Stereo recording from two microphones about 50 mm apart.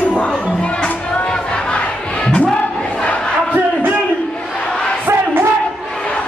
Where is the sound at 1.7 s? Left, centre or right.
Centre.